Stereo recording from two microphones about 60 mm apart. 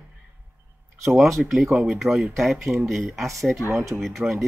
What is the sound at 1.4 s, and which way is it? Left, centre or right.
Speech, centre.